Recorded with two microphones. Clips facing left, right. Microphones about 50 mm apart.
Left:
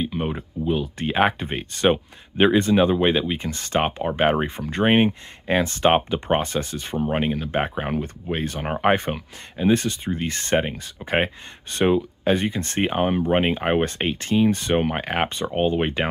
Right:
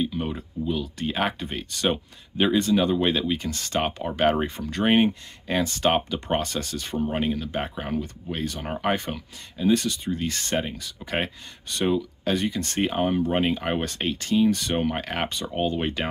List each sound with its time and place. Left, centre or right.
0.0 s speech: left